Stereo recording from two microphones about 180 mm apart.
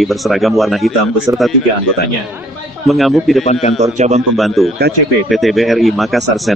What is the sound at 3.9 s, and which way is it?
Speech, 40° right (ahead or behind).